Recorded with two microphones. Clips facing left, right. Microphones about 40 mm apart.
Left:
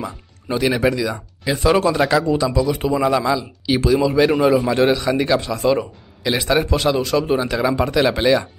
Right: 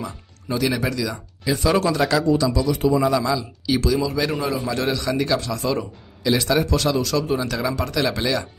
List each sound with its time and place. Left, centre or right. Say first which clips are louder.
0.5 s a man's voice: left 5 dB; left